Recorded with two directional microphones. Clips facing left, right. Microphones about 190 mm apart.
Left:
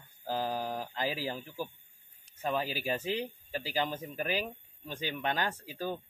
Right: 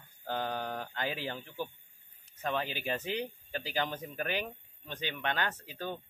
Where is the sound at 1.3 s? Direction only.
10° left (ahead or behind).